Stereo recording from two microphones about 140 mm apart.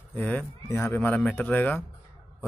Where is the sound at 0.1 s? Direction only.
15° left (ahead or behind).